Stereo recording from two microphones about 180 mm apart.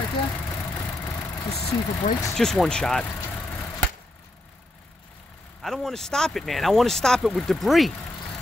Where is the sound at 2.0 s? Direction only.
40° left (ahead or behind).